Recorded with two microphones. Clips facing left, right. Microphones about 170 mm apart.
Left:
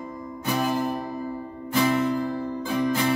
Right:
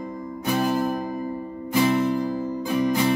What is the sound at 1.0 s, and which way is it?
Music, 15° right (ahead or behind).